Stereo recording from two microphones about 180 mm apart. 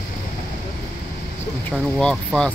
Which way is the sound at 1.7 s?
5° left (ahead or behind).